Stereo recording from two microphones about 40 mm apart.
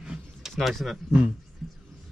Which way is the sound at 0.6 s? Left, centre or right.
Centre.